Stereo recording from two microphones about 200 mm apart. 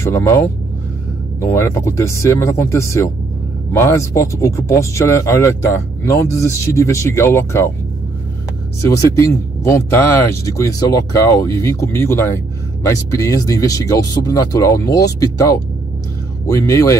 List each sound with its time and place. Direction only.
0.0 s speech: 15° left (ahead or behind)
8.8 s speech: 15° left (ahead or behind)